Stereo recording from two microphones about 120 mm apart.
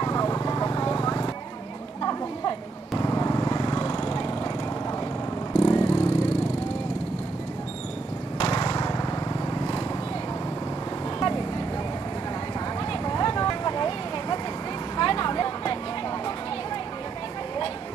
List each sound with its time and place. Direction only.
0.0 s vehicle: 30° left (ahead or behind)
3.0 s vehicle: 30° left (ahead or behind)
5.6 s vehicle: 30° left (ahead or behind)
8.4 s lawn mower: 40° left (ahead or behind)
9.5 s vehicle: 35° left (ahead or behind)
11.1 s vehicle: 40° left (ahead or behind)
13.0 s vehicle: 35° left (ahead or behind)
15.0 s a sound: 40° left (ahead or behind)